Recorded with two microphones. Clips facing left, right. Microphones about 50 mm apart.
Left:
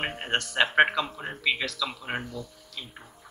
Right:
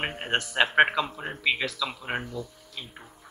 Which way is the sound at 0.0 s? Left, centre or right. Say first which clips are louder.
Right 1 dB; centre.